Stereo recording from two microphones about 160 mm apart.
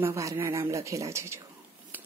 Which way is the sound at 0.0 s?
20° right (ahead or behind).